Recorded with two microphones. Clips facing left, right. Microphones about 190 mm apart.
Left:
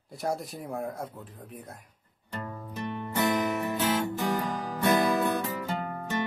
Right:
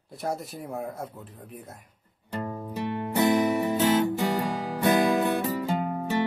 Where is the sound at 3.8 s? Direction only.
15° right (ahead or behind).